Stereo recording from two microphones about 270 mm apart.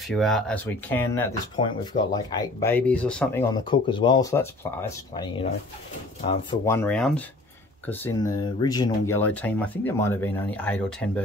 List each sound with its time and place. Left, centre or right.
0.1 s speech: centre
3.5 s speech: centre
6.6 s speech: centre